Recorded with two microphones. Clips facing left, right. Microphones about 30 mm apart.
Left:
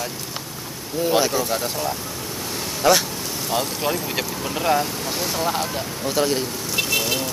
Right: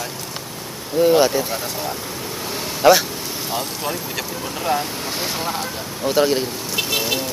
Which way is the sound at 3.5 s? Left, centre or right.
Centre.